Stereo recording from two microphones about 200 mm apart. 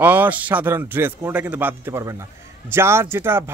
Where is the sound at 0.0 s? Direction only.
10° right (ahead or behind).